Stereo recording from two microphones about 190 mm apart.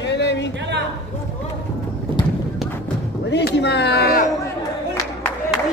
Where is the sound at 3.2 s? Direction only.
65° left (ahead or behind).